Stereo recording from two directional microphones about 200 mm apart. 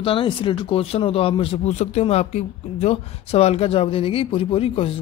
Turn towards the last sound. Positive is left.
turn(degrees=30)  # may be behind; listen again after turning